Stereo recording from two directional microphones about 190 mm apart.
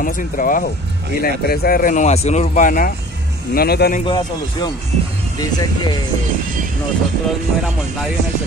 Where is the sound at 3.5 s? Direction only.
55° left (ahead or behind).